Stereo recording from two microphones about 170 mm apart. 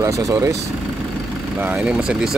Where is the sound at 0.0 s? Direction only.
20° right (ahead or behind).